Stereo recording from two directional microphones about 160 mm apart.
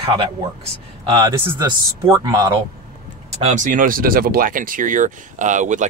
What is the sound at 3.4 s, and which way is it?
Speech, 50° right (ahead or behind).